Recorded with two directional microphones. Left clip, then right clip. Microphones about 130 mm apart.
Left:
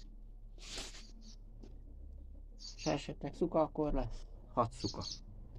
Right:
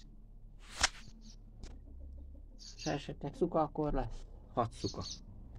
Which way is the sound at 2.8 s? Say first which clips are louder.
Left 1 dB; 20° left (ahead or behind).